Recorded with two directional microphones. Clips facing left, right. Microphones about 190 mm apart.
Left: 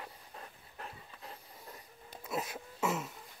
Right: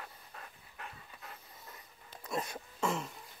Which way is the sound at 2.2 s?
5° left (ahead or behind).